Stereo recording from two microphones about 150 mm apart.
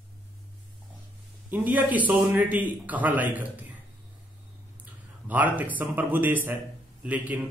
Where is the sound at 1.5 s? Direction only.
10° right (ahead or behind).